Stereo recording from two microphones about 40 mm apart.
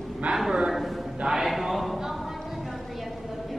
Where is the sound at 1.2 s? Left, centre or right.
Centre.